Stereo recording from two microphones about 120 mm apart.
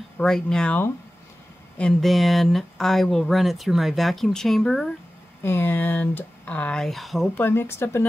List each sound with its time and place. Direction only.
0.2 s speech: 5° left (ahead or behind)
5.4 s speech: 15° left (ahead or behind); by 7.2 s centre (ahead or behind)
7.3 s speech: 20° left (ahead or behind)